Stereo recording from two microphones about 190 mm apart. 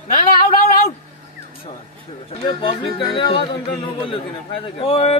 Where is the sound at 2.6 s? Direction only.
25° left (ahead or behind).